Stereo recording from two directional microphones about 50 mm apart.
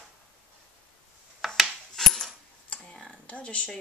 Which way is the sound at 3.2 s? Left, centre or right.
Left.